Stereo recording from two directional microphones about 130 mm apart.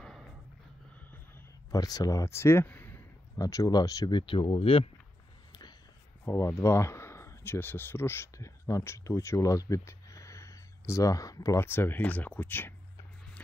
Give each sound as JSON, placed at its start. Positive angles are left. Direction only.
{"t": 1.7, "sound": "speech", "side_deg": 30}
{"t": 3.3, "sound": "speech", "side_deg": 25}
{"t": 5.5, "sound": "a sound", "side_deg": 30}
{"t": 6.2, "sound": "speech", "side_deg": 20}